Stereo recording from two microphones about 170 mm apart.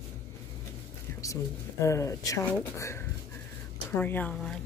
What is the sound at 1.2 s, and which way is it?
Speech, 20° left (ahead or behind).